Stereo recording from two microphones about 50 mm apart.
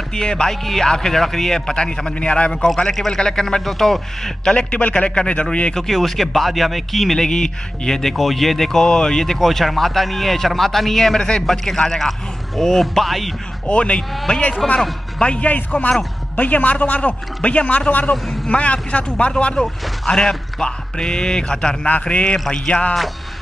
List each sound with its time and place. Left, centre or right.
0.1 s a man's voice: centre
4.5 s a man's voice: left
5.8 s speech: centre
13.7 s a man's voice: left